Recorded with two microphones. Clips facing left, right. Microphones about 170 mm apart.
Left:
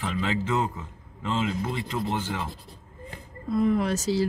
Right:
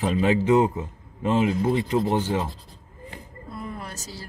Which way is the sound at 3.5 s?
90° left.